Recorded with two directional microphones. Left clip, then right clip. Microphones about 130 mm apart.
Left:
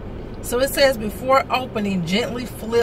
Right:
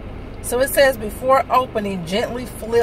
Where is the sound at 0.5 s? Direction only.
Centre (ahead or behind).